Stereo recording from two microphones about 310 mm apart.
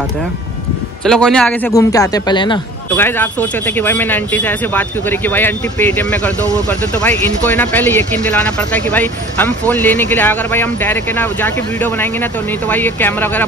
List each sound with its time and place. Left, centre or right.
1.0 s a man's voice: centre